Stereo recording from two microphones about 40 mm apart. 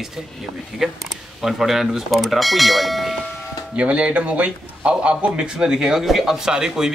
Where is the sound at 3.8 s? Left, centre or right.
Right.